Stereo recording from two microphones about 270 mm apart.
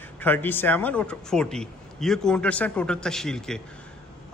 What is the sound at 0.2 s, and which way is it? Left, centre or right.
A man's voice, centre.